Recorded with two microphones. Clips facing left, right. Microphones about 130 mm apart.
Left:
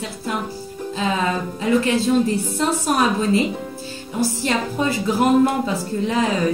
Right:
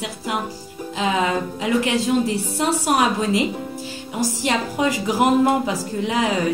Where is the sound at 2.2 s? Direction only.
15° right (ahead or behind).